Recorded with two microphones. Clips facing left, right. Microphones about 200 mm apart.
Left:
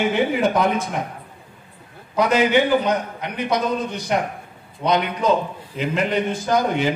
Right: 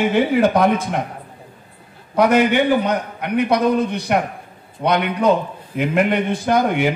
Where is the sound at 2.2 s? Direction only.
60° right (ahead or behind).